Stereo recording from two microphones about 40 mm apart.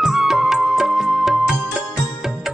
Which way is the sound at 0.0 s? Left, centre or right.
Centre.